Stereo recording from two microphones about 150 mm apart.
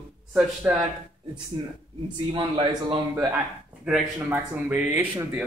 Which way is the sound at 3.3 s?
10° right (ahead or behind).